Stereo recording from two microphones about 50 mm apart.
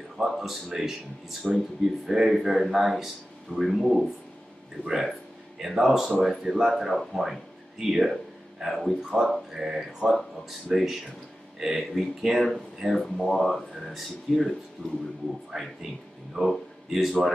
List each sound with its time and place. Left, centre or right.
0.2 s speech: centre
5.6 s speech: centre
14.8 s speech: left
15.5 s speech: centre